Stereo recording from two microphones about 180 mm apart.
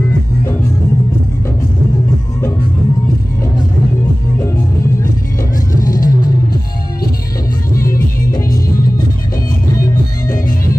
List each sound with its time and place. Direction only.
5.9 s music: 50° left (ahead or behind)